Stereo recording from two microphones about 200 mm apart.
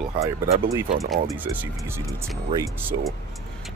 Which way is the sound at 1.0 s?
5° right (ahead or behind).